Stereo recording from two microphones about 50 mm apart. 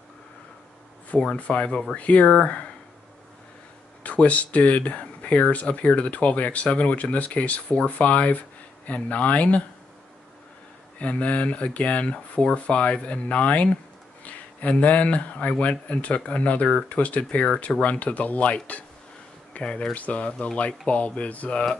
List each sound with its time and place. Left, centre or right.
1.1 s speech: left
4.0 s speech: left
11.0 s speech: left